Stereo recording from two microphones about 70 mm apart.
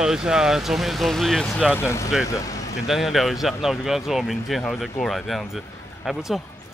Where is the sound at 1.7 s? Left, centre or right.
Left.